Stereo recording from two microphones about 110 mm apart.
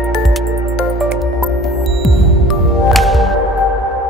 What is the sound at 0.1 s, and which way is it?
Music, centre (ahead or behind).